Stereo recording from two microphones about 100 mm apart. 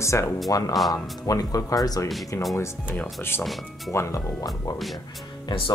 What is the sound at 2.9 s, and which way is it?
Speech, 20° left (ahead or behind).